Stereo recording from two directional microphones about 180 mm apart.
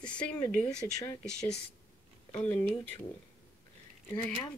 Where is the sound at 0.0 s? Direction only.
5° left (ahead or behind).